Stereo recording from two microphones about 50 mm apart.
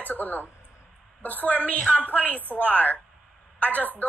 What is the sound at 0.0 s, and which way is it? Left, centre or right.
A woman's voice, left.